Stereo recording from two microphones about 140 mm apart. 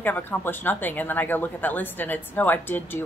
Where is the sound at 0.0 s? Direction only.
15° left (ahead or behind).